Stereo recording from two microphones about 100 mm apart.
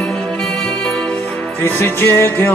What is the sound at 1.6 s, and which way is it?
Music, 25° left (ahead or behind).